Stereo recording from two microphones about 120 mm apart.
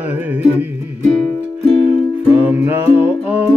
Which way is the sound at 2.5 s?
15° right (ahead or behind).